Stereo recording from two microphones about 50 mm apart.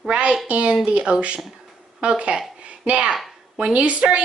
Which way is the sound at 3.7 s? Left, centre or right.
Right.